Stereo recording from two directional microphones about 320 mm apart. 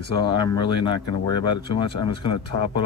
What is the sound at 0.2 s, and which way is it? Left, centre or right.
Speech, centre.